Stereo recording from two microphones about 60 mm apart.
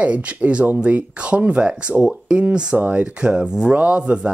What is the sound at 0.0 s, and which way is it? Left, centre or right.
Speech, right.